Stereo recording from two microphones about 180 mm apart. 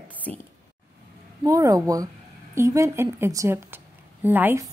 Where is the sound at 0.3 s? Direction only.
5° left (ahead or behind).